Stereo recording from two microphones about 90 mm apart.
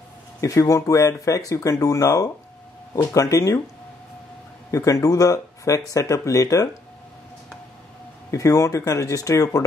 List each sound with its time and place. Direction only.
0.4 s speech: 35° left (ahead or behind)
4.6 s speech: 35° left (ahead or behind)
8.3 s speech: 35° left (ahead or behind)